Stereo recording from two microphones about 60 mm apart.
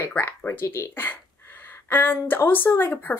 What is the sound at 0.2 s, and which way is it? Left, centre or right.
Speech, left.